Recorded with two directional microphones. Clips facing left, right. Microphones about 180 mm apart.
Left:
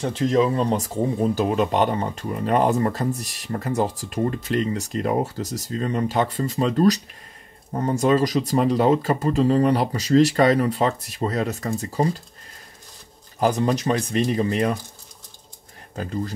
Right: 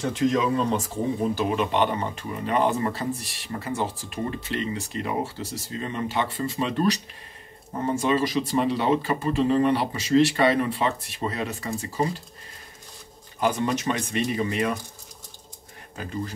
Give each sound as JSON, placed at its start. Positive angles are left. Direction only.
{"t": 0.0, "sound": "speech", "side_deg": 30}
{"t": 13.4, "sound": "speech", "side_deg": 40}